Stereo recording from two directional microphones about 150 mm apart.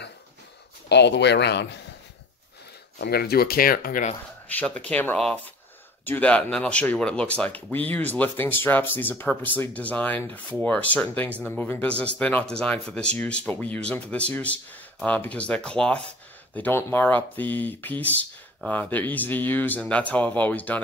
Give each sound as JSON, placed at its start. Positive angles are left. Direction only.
{"t": 3.0, "sound": "speech", "side_deg": 90}
{"t": 4.5, "sound": "speech", "side_deg": 10}